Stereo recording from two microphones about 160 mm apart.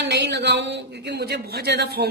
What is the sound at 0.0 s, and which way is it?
A man's voice, 90° right.